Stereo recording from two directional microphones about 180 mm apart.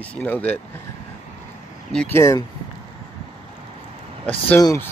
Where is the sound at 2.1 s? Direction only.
15° left (ahead or behind).